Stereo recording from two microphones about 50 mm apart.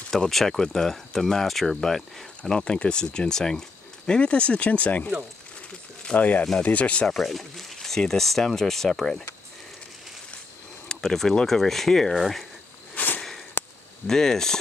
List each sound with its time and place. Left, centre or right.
0.1 s speech: centre; by 5.1 s left
6.1 s speech: left
7.1 s speech: centre
10.9 s speech: centre
12.9 s a sound: left
14.0 s speech: centre